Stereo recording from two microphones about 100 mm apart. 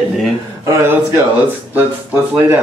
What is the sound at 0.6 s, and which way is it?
Speech, 25° right (ahead or behind).